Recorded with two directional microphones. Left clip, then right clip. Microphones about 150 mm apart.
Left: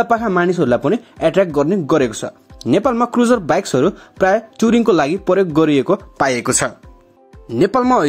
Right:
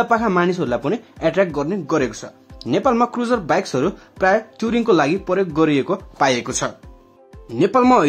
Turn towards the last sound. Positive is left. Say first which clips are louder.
# left 1 dB
turn(degrees=40)  # may be behind; listen again after turning